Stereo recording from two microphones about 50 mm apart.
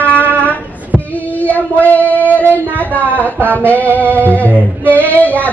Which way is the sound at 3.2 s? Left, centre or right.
Left.